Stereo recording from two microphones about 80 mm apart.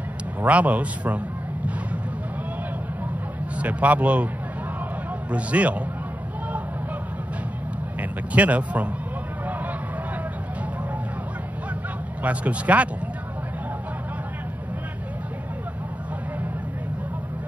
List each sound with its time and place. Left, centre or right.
0.4 s a man's voice: centre
3.5 s a man's voice: centre
5.3 s speech: centre
8.0 s speech: centre
12.2 s speech: centre